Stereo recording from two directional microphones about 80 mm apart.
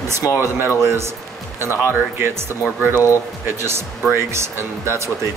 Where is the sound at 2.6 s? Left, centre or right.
Right.